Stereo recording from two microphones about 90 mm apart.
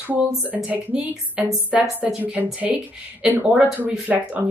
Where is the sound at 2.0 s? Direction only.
20° right (ahead or behind).